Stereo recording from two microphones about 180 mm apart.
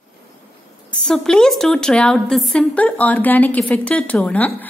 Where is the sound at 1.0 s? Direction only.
Centre (ahead or behind).